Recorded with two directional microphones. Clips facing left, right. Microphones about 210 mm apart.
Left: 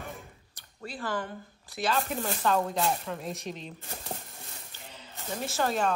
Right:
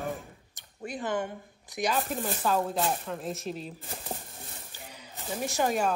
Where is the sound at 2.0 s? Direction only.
Centre (ahead or behind).